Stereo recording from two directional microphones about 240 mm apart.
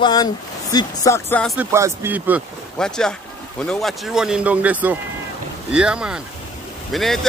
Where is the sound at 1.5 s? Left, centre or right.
Centre.